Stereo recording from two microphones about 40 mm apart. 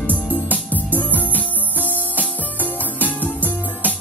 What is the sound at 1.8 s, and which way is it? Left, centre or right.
Music, right.